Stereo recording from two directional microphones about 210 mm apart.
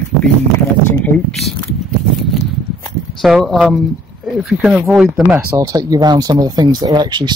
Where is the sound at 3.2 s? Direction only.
Centre (ahead or behind).